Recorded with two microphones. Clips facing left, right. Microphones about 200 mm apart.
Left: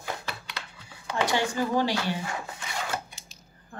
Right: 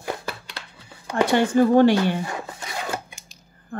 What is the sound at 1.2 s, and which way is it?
Speech, 55° right (ahead or behind).